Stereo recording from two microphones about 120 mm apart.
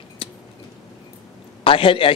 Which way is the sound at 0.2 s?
50° left (ahead or behind).